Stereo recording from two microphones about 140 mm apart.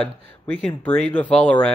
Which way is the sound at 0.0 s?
10° left (ahead or behind).